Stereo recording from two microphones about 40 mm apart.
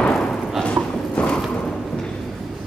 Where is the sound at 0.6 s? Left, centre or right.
Left.